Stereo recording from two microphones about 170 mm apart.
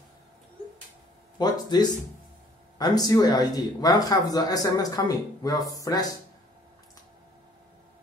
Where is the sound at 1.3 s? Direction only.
25° left (ahead or behind).